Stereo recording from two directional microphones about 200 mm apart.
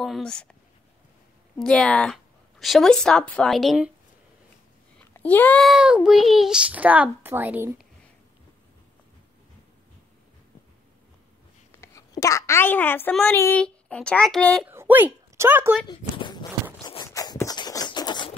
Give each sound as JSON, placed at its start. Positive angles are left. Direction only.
{"t": 0.0, "sound": "a child's voice", "side_deg": 0}
{"t": 1.6, "sound": "a child's voice", "side_deg": 5}
{"t": 5.1, "sound": "a child's voice", "side_deg": 10}
{"t": 11.8, "sound": "a child's voice", "side_deg": 15}
{"t": 14.7, "sound": "a sound", "side_deg": -10}
{"t": 15.3, "sound": "speech", "side_deg": -10}
{"t": 15.9, "sound": "a sound", "side_deg": 20}
{"t": 16.8, "sound": "zipper", "side_deg": 20}